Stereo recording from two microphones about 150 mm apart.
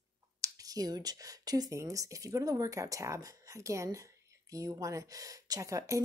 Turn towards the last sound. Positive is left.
turn(degrees=-20)  # may be behind; listen again after turning